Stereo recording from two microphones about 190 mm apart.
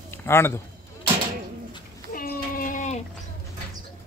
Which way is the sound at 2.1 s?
50° left (ahead or behind).